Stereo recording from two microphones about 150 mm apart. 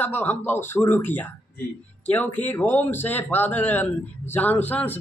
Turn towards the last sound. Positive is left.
turn(degrees=10)  # may be behind; listen again after turning